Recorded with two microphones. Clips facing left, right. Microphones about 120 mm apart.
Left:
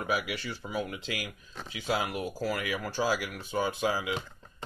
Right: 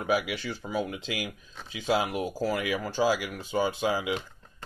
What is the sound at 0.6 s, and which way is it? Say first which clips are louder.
Speech: right 3 dB; 15° right (ahead or behind).